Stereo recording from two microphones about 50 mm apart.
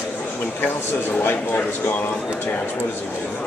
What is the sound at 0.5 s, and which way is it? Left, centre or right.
A man's voice, left.